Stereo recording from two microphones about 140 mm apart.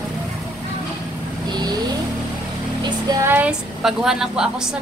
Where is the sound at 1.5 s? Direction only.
30° right (ahead or behind).